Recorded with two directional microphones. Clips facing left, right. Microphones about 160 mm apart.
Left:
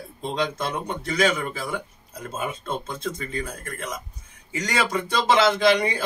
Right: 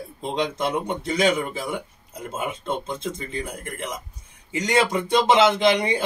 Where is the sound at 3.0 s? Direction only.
20° right (ahead or behind).